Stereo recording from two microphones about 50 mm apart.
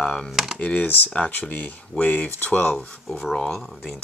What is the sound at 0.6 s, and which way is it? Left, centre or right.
Speech, left.